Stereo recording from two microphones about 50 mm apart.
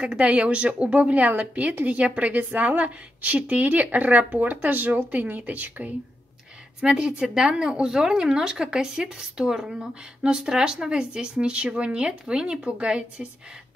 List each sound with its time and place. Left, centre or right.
0.0 s a woman's voice: right
6.8 s speech: centre